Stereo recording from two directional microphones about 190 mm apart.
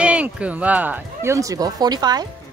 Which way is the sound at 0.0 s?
5° right (ahead or behind).